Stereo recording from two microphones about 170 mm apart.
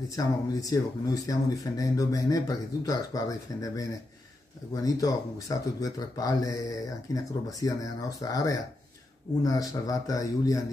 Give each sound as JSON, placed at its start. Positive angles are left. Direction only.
{"t": 0.1, "sound": "speech", "side_deg": 20}